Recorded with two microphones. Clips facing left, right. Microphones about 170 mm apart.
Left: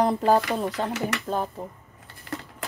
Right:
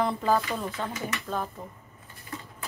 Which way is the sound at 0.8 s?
70° left (ahead or behind).